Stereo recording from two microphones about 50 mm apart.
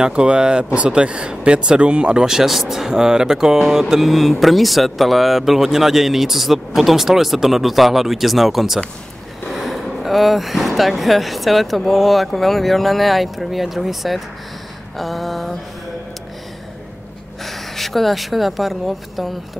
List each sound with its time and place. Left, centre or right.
0.0 s speech: centre
17.5 s speech: centre